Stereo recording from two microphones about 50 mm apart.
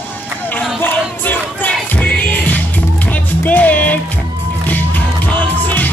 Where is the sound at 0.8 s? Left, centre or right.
Left.